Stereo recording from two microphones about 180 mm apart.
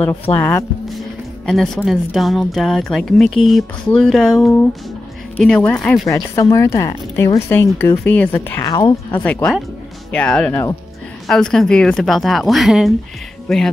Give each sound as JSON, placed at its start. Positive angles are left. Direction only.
{"t": 0.3, "sound": "speech", "side_deg": 10}
{"t": 1.4, "sound": "speech", "side_deg": 0}
{"t": 6.0, "sound": "speech", "side_deg": 15}
{"t": 8.6, "sound": "speech", "side_deg": 25}
{"t": 9.1, "sound": "speech", "side_deg": 10}
{"t": 11.2, "sound": "speech", "side_deg": 5}